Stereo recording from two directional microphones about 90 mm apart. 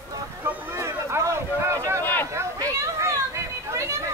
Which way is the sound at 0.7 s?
35° right (ahead or behind).